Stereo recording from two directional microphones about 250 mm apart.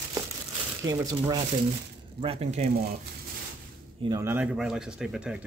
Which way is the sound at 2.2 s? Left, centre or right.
Right.